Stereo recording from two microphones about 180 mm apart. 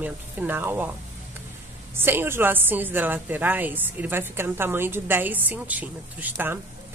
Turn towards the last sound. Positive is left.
turn(degrees=-10)  # may be behind; listen again after turning